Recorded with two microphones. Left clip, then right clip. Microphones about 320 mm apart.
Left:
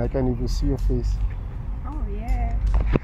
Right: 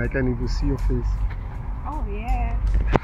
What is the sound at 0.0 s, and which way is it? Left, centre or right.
Speech, centre.